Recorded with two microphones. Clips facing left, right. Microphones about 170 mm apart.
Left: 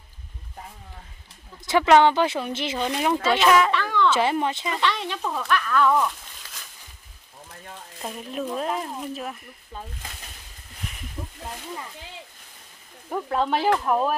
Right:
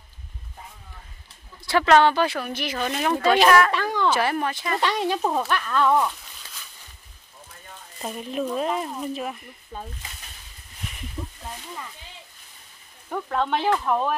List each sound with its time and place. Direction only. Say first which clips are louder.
1.7 s speech: left 1 dB; 15° left (ahead or behind)
3.7 s a sound: left 1 dB; 40° right (ahead or behind)
4.2 s speech: left 1 dB; 20° left (ahead or behind)
4.7 s speech: right 3 dB; 40° right (ahead or behind)
5.5 s speech: left 3 dB; 25° right (ahead or behind)
8.0 s speech: right 3 dB; centre (ahead or behind)
9.7 s speech: right 2 dB; 15° right (ahead or behind)
11.2 s a sound: right 2 dB; 5° left (ahead or behind)
13.1 s speech: left 1 dB; 10° left (ahead or behind)